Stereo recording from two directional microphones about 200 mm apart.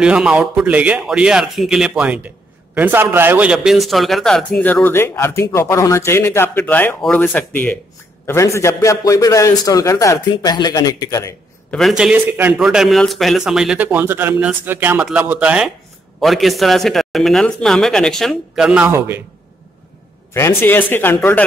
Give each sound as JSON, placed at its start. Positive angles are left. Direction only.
{"t": 0.0, "sound": "a man's voice", "side_deg": -5}
{"t": 11.8, "sound": "a man's voice", "side_deg": -5}
{"t": 20.3, "sound": "a man's voice", "side_deg": 10}